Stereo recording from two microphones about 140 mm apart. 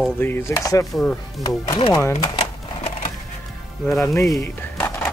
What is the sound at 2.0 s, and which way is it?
Speech, 20° left (ahead or behind).